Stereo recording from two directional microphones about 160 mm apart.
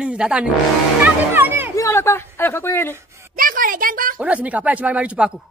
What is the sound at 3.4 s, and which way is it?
Speech, 60° right (ahead or behind).